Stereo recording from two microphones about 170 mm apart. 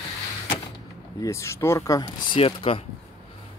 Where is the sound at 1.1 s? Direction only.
15° left (ahead or behind).